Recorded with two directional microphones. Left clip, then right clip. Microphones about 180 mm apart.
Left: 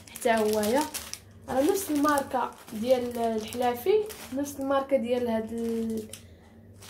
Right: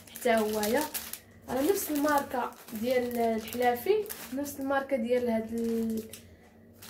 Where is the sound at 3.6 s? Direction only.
30° left (ahead or behind).